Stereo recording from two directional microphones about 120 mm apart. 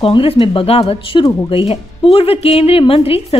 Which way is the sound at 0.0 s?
50° left (ahead or behind).